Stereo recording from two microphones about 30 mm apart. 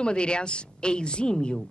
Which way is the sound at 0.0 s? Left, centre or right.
Left.